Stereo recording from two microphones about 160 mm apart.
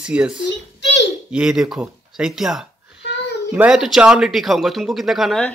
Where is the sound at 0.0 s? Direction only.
5° right (ahead or behind).